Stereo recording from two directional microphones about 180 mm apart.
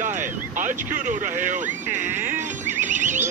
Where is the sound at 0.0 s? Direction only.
45° right (ahead or behind).